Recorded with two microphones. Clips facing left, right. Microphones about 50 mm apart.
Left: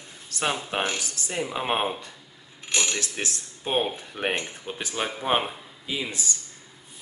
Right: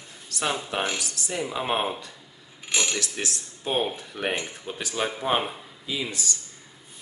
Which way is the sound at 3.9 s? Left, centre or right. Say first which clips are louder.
Left 1 dB; left.